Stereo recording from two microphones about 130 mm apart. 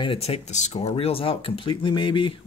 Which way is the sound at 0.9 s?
45° left (ahead or behind).